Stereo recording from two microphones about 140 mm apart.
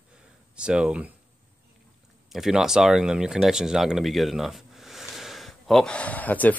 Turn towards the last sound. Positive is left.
turn(degrees=10)  # may be behind; listen again after turning